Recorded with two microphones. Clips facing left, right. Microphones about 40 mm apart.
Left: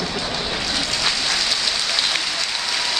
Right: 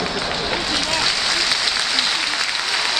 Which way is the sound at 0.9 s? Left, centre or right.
Centre.